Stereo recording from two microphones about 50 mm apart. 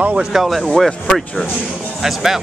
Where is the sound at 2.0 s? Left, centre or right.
Centre.